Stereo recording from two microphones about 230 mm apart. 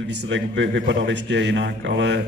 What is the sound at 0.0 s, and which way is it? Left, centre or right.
A man's voice, right.